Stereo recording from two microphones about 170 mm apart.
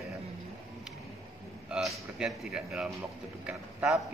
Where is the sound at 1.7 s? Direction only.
5° right (ahead or behind).